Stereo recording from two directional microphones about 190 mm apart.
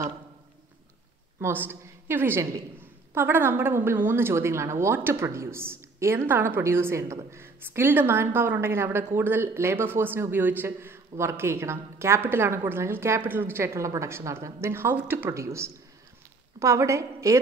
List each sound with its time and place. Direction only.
1.4 s a woman's voice: 10° right (ahead or behind)